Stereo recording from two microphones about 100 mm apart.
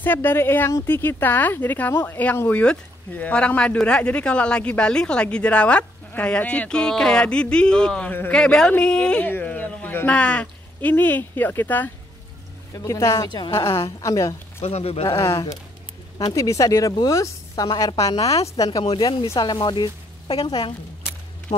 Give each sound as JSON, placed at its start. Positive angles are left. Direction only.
{"t": 0.0, "sound": "a woman's voice", "side_deg": 20}
{"t": 8.1, "sound": "speech", "side_deg": 20}
{"t": 8.4, "sound": "speech", "side_deg": 10}
{"t": 12.7, "sound": "a woman's voice", "side_deg": 30}
{"t": 14.6, "sound": "speech", "side_deg": 85}
{"t": 15.0, "sound": "a woman's voice", "side_deg": 25}
{"t": 18.6, "sound": "a woman's voice", "side_deg": 50}
{"t": 21.5, "sound": "a sound", "side_deg": 55}